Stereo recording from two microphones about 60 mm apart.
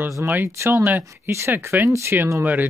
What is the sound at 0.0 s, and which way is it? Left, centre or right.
Speech, right.